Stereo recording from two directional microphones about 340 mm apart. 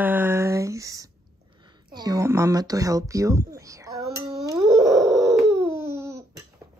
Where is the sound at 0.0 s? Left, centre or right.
Centre.